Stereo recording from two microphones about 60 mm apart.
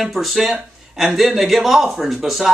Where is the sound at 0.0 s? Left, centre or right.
Centre.